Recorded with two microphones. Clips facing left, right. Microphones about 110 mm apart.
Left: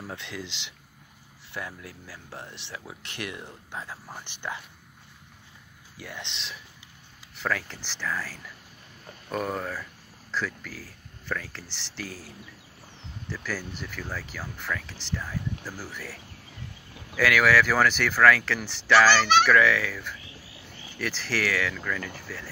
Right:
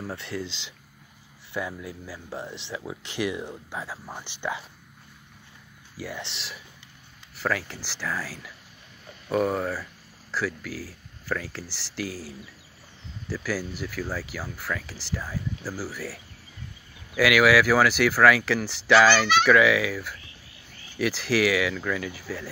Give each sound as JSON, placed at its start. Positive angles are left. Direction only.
{"t": 0.0, "sound": "speech", "side_deg": -5}
{"t": 0.5, "sound": "speech", "side_deg": 80}
{"t": 1.5, "sound": "speech", "side_deg": -10}
{"t": 5.9, "sound": "speech", "side_deg": -5}
{"t": 17.2, "sound": "speech", "side_deg": -10}